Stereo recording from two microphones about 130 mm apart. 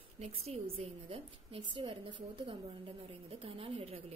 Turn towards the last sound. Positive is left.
turn(degrees=-50)  # may be behind; listen again after turning